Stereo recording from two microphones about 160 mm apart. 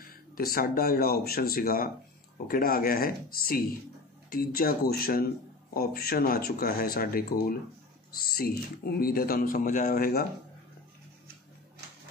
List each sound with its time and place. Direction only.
0.0 s speech: 70° left (ahead or behind)